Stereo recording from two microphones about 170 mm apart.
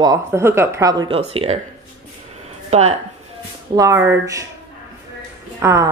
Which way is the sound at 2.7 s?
40° right (ahead or behind).